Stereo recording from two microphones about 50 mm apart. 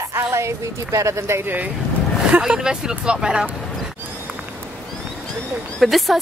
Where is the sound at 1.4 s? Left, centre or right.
Right.